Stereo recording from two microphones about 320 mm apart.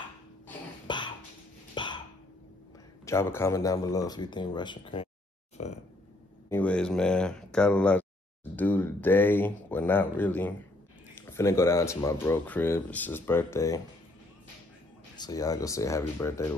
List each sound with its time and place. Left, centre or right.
0.5 s cough: centre
1.8 s hiccup: centre
3.1 s speech: centre
6.5 s speech: centre
15.1 s speech: centre